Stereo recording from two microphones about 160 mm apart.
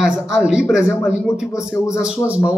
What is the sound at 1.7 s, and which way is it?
Speech, 15° left (ahead or behind).